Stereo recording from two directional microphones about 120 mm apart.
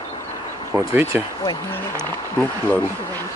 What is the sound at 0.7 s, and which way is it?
Speech, 20° right (ahead or behind).